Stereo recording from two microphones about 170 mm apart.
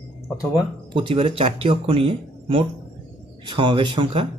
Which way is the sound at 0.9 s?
30° right (ahead or behind).